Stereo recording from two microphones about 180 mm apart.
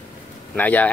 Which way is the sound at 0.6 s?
10° left (ahead or behind).